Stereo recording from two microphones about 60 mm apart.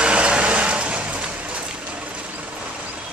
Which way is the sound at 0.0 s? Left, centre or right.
Centre.